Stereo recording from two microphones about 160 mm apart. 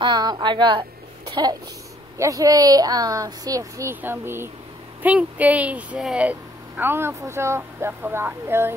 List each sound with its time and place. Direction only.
0.0 s speech: 25° right (ahead or behind)
1.3 s a sound: 25° right (ahead or behind)
2.1 s speech: 20° right (ahead or behind)